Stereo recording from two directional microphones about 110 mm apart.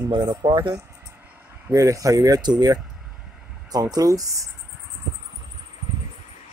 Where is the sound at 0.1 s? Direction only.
45° right (ahead or behind).